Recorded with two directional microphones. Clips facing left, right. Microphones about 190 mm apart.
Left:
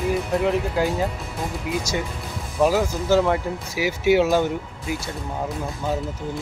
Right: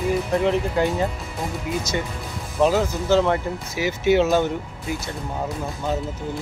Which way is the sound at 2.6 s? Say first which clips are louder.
Even; 10° left (ahead or behind).